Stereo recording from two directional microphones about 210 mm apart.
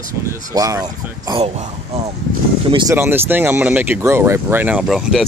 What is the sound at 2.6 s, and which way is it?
Speech, 20° right (ahead or behind).